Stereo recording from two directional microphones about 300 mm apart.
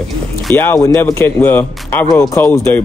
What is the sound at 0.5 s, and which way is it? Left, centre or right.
Speech, centre.